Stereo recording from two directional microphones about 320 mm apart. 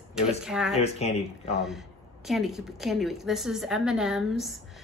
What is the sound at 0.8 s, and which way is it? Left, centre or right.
Speech, centre.